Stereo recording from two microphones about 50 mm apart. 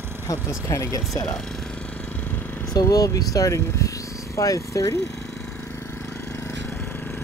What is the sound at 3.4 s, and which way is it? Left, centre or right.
Speech, left.